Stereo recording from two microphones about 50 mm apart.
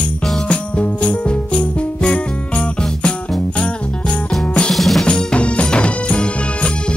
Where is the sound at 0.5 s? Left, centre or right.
Left.